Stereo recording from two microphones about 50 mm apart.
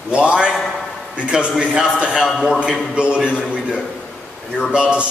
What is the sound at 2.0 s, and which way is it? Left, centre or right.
A man's voice, centre.